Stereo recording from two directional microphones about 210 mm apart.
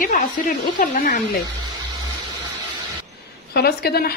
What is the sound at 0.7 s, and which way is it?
Speech, 40° left (ahead or behind).